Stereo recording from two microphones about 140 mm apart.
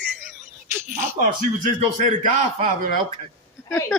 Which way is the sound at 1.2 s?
70° right (ahead or behind).